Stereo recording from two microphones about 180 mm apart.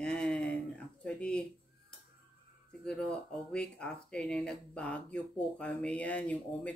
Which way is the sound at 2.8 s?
5° left (ahead or behind).